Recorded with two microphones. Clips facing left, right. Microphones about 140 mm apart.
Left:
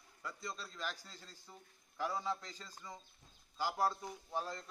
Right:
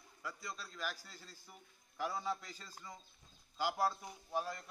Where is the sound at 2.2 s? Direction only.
15° right (ahead or behind).